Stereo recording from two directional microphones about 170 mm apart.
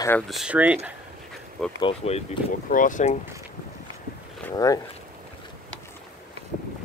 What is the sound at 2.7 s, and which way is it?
Speech, 50° left (ahead or behind).